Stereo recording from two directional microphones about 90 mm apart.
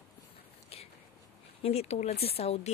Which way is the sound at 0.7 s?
90° left.